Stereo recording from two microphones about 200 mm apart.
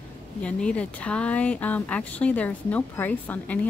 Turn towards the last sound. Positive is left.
turn(degrees=10)  # may be behind; listen again after turning